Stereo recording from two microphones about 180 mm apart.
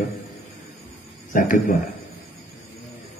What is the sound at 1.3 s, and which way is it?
Speech, 45° left (ahead or behind).